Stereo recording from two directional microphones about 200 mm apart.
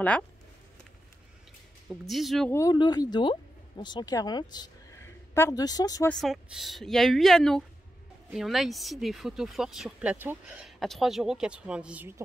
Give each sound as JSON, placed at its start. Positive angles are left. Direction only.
{"t": 1.9, "sound": "speech", "side_deg": 0}
{"t": 2.5, "sound": "speech", "side_deg": 20}
{"t": 6.0, "sound": "speech", "side_deg": 0}